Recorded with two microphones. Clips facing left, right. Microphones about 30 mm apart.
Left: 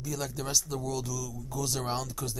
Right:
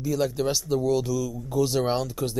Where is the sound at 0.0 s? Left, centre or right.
Right.